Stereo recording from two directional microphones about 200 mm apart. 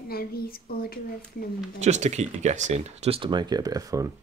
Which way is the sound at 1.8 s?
35° right (ahead or behind).